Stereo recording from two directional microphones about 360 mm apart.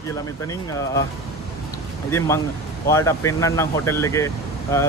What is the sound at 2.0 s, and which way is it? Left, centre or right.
Speech, centre.